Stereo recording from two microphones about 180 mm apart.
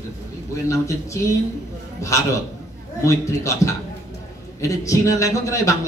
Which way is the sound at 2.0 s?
15° left (ahead or behind).